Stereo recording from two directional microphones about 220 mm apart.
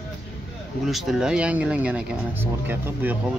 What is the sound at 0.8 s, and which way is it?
Speech, centre (ahead or behind).